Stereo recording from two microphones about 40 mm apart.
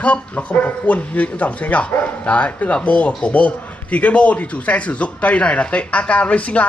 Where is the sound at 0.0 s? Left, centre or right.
Left.